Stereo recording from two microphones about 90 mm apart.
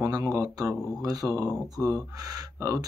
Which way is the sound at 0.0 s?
40° right (ahead or behind).